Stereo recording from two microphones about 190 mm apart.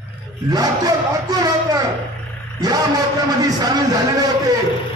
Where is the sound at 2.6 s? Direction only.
20° right (ahead or behind).